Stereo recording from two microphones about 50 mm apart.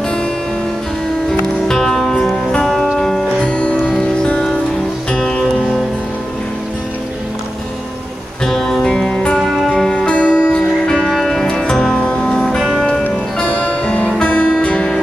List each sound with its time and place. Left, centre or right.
1.7 s music: centre
5.1 s music: centre
8.5 s music: centre
8.9 s music: centre
9.4 s music: centre; by 10.6 s left
11.0 s music: centre
11.4 s music: centre
13.5 s music: left